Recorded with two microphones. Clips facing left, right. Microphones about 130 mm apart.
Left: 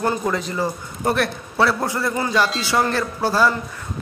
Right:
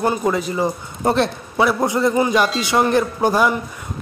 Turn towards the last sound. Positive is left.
turn(degrees=-15)  # may be behind; listen again after turning